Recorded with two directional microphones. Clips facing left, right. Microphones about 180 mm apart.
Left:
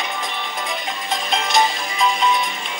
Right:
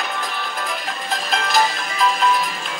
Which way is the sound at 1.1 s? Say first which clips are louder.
Left 1 dB; 5° right (ahead or behind).